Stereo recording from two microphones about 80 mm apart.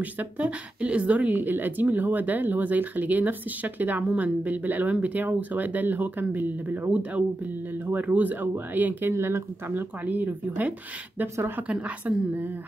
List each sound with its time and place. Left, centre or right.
0.0 s a woman's voice: centre
11.3 s a woman's voice: right